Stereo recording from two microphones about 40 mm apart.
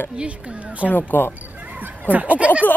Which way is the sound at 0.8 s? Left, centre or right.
Left.